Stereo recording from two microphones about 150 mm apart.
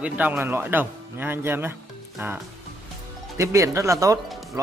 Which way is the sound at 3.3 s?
20° right (ahead or behind).